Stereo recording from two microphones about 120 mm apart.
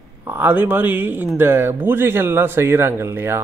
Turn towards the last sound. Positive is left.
turn(degrees=-20)  # may be behind; listen again after turning